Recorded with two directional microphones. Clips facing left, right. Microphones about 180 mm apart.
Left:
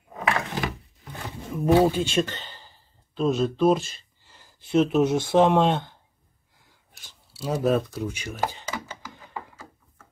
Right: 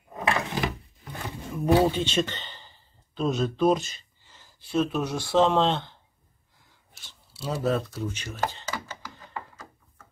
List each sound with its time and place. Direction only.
1.5 s speech: 5° left (ahead or behind)
4.6 s speech: 20° left (ahead or behind)
7.3 s a sound: 15° left (ahead or behind)